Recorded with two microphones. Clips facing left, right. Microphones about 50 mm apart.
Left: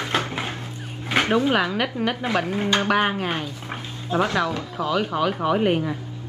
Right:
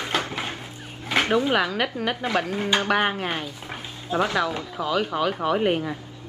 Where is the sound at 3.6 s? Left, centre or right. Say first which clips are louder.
Left 2 dB; centre.